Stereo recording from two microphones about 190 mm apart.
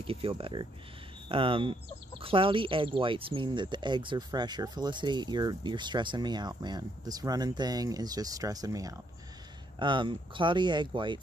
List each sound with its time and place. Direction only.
0.0 s speech: 30° right (ahead or behind)